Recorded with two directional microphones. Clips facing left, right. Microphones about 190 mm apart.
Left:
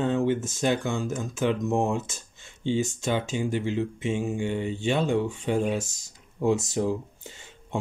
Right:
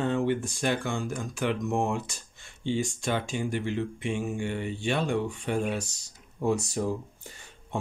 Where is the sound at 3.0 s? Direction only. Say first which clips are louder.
Left 3 dB; 20° left (ahead or behind).